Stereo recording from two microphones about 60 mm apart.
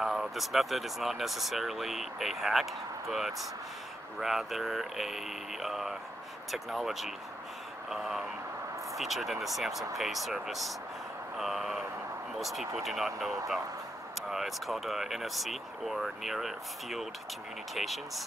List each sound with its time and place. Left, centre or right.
0.0 s speech: centre
14.3 s speech: centre